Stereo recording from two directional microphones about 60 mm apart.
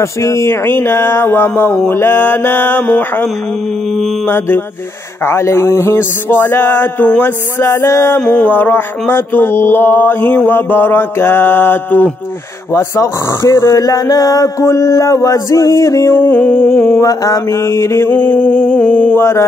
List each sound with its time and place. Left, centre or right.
0.0 s mantra: left
4.3 s mantra: left
7.6 s speech: left
8.4 s mantra: left
12.7 s speech: left
13.7 s music: left
14.7 s a sound: left
16.1 s mantra: left
17.0 s mantra: left